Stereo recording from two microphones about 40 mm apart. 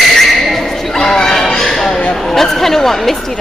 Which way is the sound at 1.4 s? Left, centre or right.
Centre.